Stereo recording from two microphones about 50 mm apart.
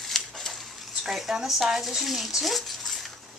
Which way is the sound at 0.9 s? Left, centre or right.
Centre.